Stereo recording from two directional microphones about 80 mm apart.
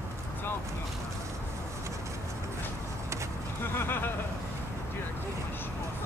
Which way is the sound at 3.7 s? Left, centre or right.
Left.